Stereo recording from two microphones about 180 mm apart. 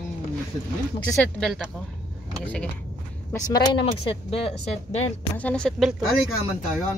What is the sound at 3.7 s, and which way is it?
Speech, 30° left (ahead or behind).